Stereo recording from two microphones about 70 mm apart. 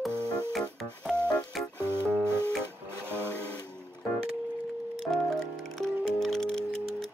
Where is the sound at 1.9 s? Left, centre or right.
Right.